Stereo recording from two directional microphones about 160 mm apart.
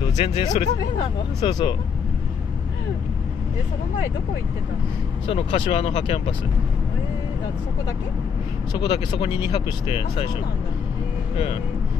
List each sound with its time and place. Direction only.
0.2 s speech: 40° left (ahead or behind)
5.2 s speech: 35° left (ahead or behind)
8.8 s speech: 35° left (ahead or behind)